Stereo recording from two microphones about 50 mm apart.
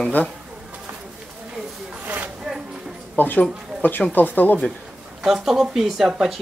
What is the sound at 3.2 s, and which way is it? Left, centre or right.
Speech, left.